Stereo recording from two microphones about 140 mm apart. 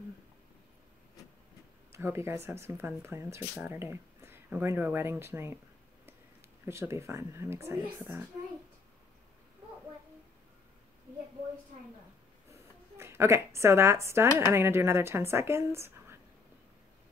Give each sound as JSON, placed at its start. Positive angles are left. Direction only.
{"t": 1.9, "sound": "speech", "side_deg": -20}
{"t": 6.6, "sound": "a woman's voice", "side_deg": -20}
{"t": 12.4, "sound": "a sound", "side_deg": -20}
{"t": 14.5, "sound": "speech", "side_deg": -20}